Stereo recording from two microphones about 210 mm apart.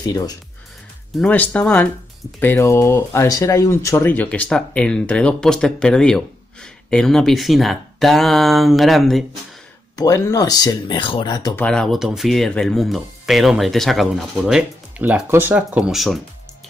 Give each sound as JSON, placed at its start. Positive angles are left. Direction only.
{"t": 0.0, "sound": "speech", "side_deg": 15}
{"t": 1.1, "sound": "speech", "side_deg": 5}
{"t": 9.9, "sound": "speech", "side_deg": 15}
{"t": 11.6, "sound": "speech", "side_deg": 5}